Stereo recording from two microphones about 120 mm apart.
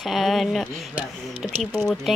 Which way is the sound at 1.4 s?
Centre (ahead or behind).